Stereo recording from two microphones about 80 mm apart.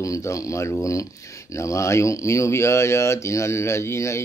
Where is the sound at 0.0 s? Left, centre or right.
Left.